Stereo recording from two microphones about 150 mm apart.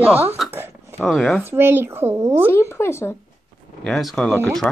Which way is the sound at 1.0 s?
5° left (ahead or behind).